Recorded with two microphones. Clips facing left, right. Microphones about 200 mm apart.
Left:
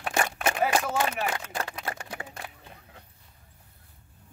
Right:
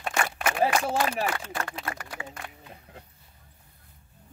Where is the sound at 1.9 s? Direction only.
30° left (ahead or behind).